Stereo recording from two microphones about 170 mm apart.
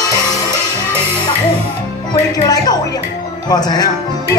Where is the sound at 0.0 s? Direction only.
20° left (ahead or behind).